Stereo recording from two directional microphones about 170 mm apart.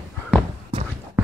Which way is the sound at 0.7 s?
30° right (ahead or behind).